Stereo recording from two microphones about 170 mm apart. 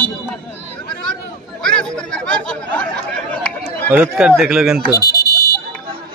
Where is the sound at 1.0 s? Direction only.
5° left (ahead or behind).